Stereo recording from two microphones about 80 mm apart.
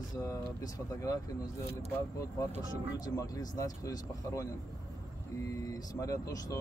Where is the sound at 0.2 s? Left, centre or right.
Left.